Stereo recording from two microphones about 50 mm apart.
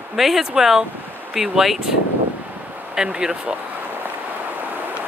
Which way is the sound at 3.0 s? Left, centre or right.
Centre.